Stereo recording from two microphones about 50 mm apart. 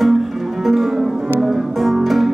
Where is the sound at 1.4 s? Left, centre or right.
Centre.